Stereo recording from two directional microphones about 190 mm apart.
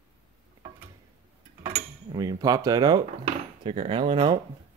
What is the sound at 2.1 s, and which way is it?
Speech, 20° right (ahead or behind).